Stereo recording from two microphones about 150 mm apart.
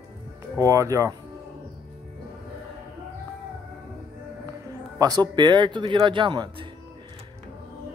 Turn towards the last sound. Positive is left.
turn(degrees=-30)  # may be behind; listen again after turning